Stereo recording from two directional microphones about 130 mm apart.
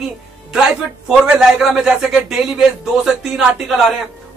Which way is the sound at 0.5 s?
5° right (ahead or behind).